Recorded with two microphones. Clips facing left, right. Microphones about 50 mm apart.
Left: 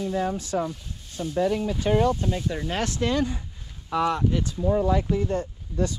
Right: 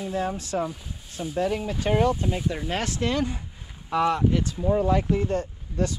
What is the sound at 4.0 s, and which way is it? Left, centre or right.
Speech, right.